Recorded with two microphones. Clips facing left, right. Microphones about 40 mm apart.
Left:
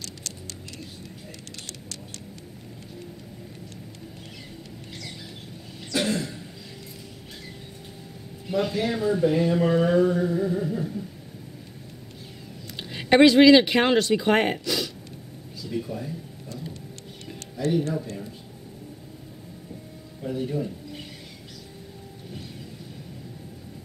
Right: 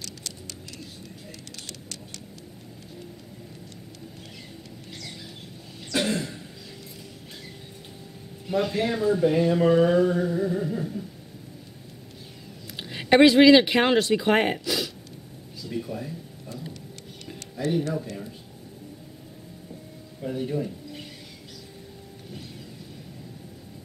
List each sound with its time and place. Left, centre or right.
1.7 s vehicle: left
5.9 s throat clearing: centre
8.5 s speech: centre
8.8 s a sound: centre
12.7 s speech: centre
15.7 s a sound: centre
20.2 s speech: centre